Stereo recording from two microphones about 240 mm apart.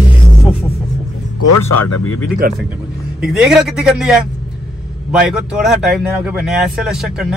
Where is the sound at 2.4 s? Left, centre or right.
Right.